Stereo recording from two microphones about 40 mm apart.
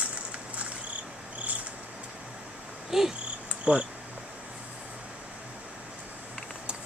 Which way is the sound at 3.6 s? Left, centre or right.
Right.